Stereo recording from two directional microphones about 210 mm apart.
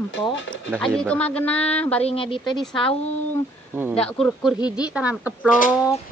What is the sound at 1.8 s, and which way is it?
Speech, 5° left (ahead or behind).